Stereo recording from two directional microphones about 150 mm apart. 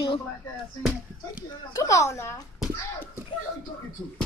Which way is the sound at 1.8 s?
20° left (ahead or behind).